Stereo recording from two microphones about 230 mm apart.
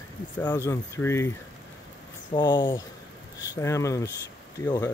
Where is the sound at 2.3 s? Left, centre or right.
Centre.